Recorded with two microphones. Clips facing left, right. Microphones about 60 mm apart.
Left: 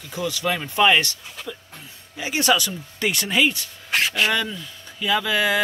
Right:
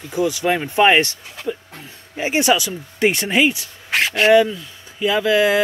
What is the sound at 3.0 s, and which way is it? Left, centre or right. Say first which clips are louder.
Speech: right 5 dB; right.